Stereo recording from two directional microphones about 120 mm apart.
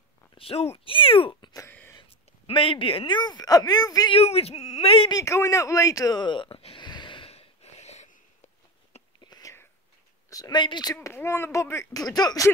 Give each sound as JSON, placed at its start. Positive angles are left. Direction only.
{"t": 0.4, "sound": "speech", "side_deg": 55}
{"t": 1.7, "sound": "a sound", "side_deg": 15}
{"t": 2.0, "sound": "speech", "side_deg": 50}
{"t": 4.1, "sound": "speech", "side_deg": 60}
{"t": 5.1, "sound": "a sound", "side_deg": 25}
{"t": 9.2, "sound": "whispering", "side_deg": 30}
{"t": 10.3, "sound": "speech", "side_deg": 35}
{"t": 11.0, "sound": "speech", "side_deg": 20}